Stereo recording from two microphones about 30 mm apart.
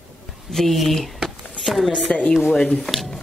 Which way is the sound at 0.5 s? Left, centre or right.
Centre.